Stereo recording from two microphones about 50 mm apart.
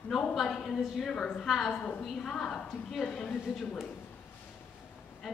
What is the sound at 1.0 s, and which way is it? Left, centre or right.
A woman's voice, centre.